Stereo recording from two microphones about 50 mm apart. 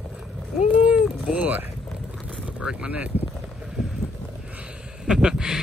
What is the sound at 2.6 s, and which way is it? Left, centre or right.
Speech, right.